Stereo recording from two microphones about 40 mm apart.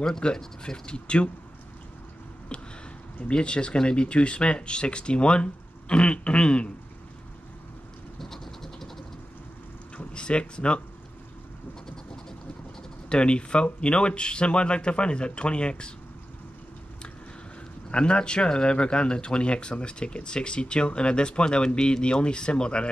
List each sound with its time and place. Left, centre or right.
0.0 s speech: centre
2.5 s a sound: left
3.2 s speech: left
8.2 s train: centre
10.1 s speech: left
13.1 s speech: left
17.9 s speech: left